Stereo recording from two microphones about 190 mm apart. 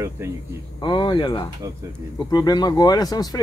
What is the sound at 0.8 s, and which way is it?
Speech, 25° left (ahead or behind).